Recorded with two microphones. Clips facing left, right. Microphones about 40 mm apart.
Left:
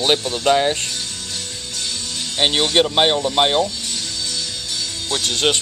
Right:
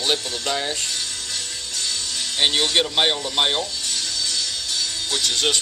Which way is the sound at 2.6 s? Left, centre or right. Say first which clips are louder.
Left 6 dB; centre.